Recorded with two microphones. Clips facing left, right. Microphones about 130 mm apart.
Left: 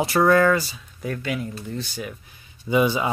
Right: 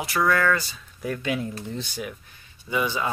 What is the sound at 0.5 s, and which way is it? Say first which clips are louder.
Speech: left 4 dB; 5° left (ahead or behind).